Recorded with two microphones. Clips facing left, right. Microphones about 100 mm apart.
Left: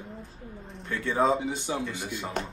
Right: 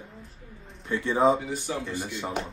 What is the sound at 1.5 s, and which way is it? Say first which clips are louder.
Speech: even; 20° left (ahead or behind).